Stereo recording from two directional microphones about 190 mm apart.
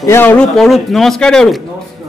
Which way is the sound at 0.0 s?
10° left (ahead or behind).